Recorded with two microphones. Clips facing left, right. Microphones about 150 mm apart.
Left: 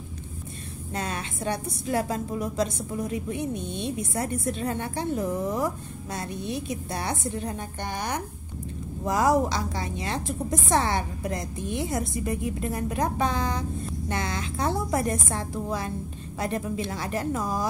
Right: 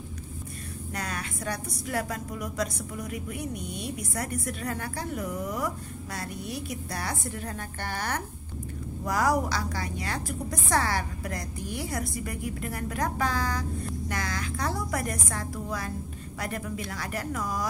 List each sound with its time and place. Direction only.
0.9 s a woman's voice: 25° left (ahead or behind)